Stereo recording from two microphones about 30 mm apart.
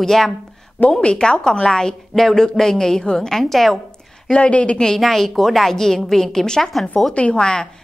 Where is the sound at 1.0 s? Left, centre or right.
Left.